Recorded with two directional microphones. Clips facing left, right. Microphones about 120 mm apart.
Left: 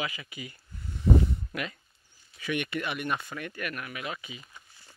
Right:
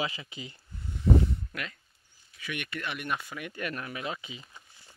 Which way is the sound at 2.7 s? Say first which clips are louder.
Left 4 dB; 10° left (ahead or behind).